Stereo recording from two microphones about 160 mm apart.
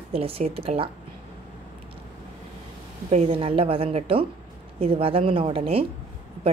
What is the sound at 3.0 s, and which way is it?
A woman's voice, 40° right (ahead or behind).